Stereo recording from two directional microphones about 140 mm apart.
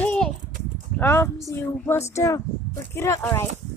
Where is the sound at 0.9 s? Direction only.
15° left (ahead or behind).